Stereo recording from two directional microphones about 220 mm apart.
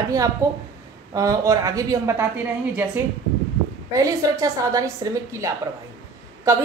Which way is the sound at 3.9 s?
15° right (ahead or behind).